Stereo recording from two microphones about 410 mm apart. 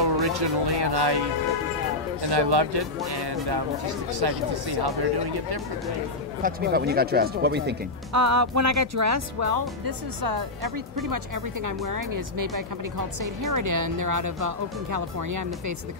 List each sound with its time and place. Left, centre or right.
0.3 s speech: right
2.2 s speech: right
6.4 s speech: right
8.1 s speech: right